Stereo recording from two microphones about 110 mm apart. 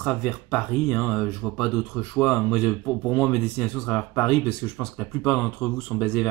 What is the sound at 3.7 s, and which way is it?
Speech, 10° left (ahead or behind).